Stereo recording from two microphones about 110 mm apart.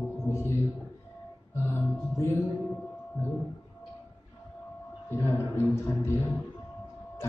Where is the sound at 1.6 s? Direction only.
20° left (ahead or behind).